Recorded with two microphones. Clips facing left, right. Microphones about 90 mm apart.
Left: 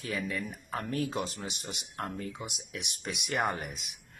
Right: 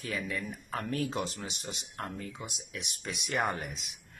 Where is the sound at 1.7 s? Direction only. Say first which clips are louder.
Left 2 dB; 20° left (ahead or behind).